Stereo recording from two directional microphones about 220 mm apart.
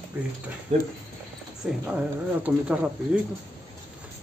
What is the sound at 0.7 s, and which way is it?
Speech, 30° right (ahead or behind).